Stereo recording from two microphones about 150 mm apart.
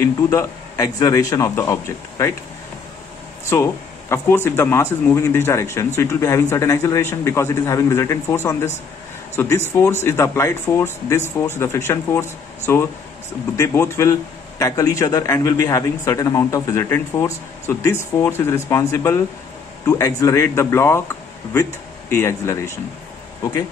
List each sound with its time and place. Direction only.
0.0 s a man's voice: 20° left (ahead or behind)
3.4 s a man's voice: 15° left (ahead or behind)